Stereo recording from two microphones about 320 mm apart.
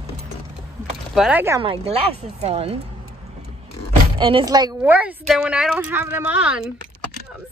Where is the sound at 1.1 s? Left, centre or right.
Centre.